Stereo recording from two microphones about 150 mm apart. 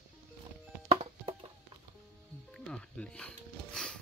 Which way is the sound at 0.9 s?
40° right (ahead or behind).